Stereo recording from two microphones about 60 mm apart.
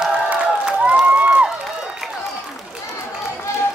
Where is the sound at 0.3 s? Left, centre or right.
Centre.